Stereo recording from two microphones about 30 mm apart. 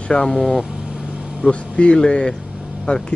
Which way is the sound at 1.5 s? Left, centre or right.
Left.